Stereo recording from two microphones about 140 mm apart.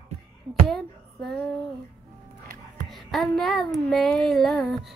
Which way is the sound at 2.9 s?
Centre (ahead or behind).